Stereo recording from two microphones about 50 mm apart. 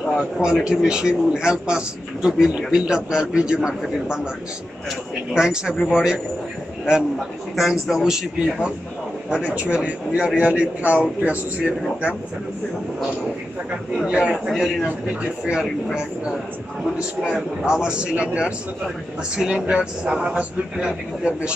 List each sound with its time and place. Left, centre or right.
0.2 s a man's voice: centre
5.3 s a man's voice: centre
7.5 s a man's voice: centre; by 11.3 s right
14.0 s a man's voice: centre
17.2 s a man's voice: centre